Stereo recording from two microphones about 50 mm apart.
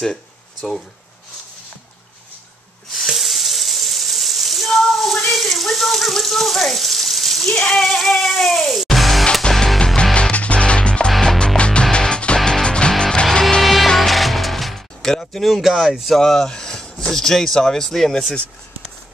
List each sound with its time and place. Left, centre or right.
0.6 s speech: centre
2.9 s a sound: centre
7.5 s a sound: centre
8.0 s music: centre
10.3 s music: left
11.1 s music: centre
13.6 s music: centre
16.2 s speech: centre